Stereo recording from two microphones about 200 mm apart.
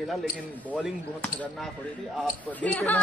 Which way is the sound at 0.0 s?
Centre (ahead or behind).